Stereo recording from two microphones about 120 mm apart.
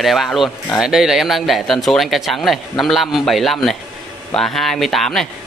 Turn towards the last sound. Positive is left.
turn(degrees=5)  # may be behind; listen again after turning